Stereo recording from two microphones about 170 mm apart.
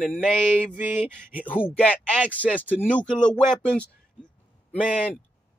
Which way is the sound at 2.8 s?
10° left (ahead or behind).